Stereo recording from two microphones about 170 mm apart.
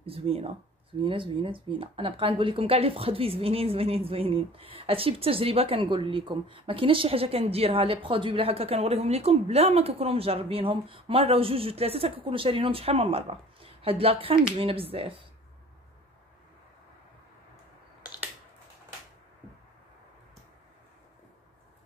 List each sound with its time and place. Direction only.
0.0 s a woman's voice: 35° right (ahead or behind)